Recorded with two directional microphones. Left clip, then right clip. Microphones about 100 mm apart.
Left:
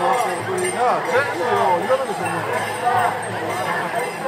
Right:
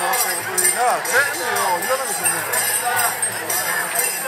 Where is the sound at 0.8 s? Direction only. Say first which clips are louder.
Right 1 dB; 40° right (ahead or behind).